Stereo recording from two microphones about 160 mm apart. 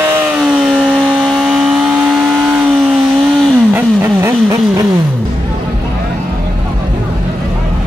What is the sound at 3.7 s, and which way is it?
Vehicle, 15° right (ahead or behind).